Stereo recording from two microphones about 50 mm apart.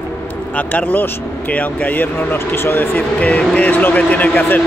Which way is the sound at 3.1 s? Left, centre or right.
Left.